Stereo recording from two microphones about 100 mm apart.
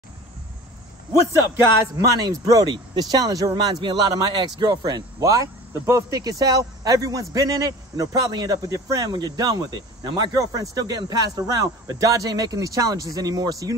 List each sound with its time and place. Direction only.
2.0 s speech: 35° right (ahead or behind)